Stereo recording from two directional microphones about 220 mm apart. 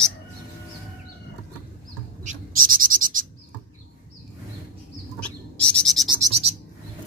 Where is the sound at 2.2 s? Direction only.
40° right (ahead or behind).